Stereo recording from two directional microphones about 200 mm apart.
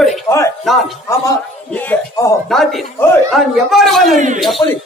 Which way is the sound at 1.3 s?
10° left (ahead or behind).